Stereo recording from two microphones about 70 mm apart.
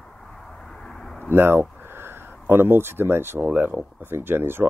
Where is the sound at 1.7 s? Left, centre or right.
Right.